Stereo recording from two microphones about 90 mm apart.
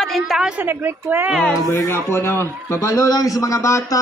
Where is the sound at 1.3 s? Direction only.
5° right (ahead or behind).